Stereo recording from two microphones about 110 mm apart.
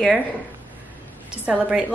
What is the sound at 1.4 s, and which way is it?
Speech, 10° right (ahead or behind).